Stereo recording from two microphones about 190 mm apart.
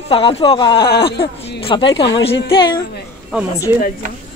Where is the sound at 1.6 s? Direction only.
25° left (ahead or behind).